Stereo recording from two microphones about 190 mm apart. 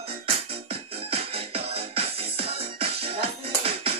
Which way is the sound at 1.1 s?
30° right (ahead or behind).